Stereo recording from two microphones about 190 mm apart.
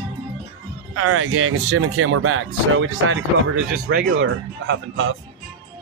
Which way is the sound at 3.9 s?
55° right (ahead or behind).